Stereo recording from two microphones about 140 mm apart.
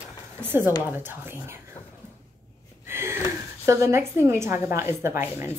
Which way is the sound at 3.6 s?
20° right (ahead or behind).